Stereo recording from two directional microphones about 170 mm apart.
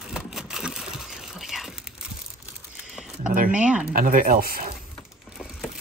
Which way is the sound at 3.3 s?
55° right (ahead or behind).